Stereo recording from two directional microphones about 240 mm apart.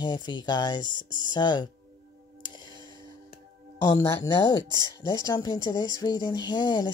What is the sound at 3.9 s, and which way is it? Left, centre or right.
Speech, centre.